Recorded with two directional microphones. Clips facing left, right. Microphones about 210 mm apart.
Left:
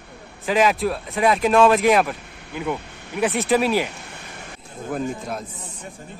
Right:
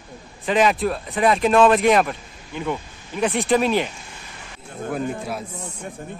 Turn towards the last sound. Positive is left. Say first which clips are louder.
# right 1 dB
turn(degrees=-5)  # may be behind; listen again after turning